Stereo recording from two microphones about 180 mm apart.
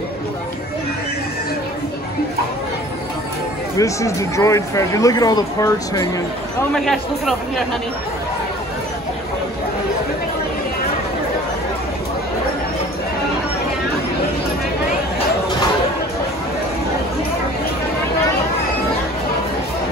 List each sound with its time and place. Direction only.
3.7 s speech: 15° left (ahead or behind)
6.7 s speech: centre (ahead or behind)